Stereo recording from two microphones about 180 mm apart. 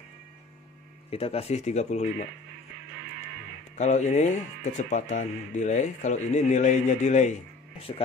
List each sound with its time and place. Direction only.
1.1 s speech: 35° left (ahead or behind)
3.7 s speech: 40° left (ahead or behind)